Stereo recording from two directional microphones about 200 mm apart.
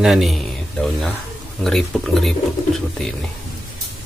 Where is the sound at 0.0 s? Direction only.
Centre (ahead or behind).